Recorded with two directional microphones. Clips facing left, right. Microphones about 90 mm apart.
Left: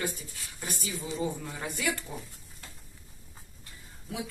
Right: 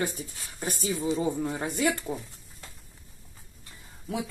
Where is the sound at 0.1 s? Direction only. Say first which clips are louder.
Right 4 dB; 35° right (ahead or behind).